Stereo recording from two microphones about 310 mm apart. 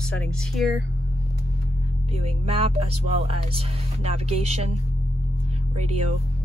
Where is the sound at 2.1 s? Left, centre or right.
Centre.